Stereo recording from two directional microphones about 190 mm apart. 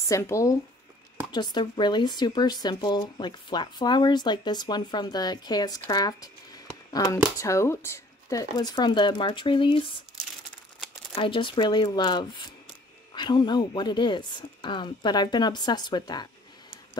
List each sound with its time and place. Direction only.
0.1 s speech: 15° left (ahead or behind)
11.1 s speech: 25° left (ahead or behind)